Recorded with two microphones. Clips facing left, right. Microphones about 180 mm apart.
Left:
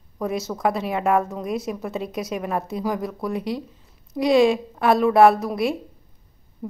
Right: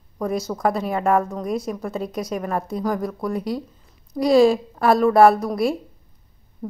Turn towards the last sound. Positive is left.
turn(degrees=5)  # may be behind; listen again after turning